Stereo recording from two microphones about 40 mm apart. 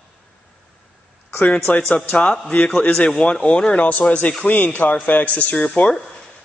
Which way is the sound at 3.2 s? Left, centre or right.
Centre.